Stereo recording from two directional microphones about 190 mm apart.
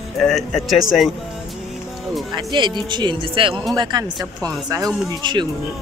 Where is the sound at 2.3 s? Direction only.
25° right (ahead or behind).